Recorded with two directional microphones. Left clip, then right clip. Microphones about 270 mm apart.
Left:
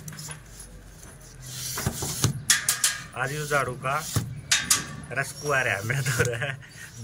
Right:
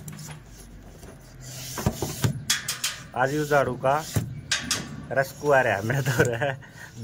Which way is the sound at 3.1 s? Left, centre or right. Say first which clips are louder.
Right 7 dB; centre.